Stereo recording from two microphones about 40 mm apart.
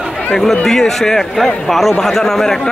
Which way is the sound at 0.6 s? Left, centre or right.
Centre.